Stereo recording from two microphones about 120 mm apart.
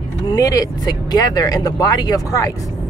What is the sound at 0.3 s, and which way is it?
Speech, 30° left (ahead or behind).